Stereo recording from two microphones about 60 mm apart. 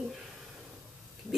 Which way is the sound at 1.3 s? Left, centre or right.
Centre.